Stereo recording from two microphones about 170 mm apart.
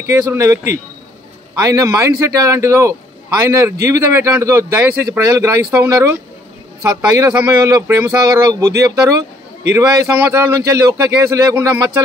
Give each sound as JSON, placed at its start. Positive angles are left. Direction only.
{"t": 0.1, "sound": "speech", "side_deg": -15}
{"t": 10.3, "sound": "speech", "side_deg": -20}